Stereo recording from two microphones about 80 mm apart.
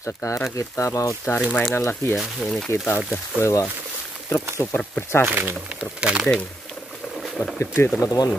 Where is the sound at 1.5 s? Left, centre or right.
Left.